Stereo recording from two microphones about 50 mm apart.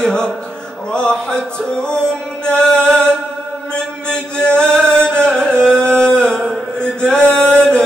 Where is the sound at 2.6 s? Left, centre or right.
Centre.